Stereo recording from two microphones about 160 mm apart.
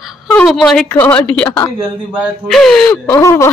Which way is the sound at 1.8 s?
10° right (ahead or behind).